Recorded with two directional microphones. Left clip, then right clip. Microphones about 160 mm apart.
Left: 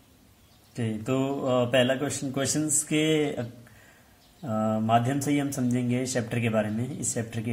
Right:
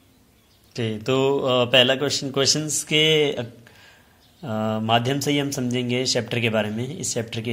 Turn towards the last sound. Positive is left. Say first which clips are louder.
# right 5 dB
turn(degrees=-20)  # may be behind; listen again after turning